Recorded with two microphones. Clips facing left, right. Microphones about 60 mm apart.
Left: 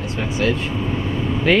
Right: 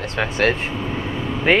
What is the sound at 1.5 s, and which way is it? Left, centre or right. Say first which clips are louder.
Speech: even; right.